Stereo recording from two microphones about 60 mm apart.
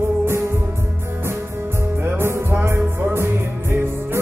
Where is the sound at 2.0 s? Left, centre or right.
Right.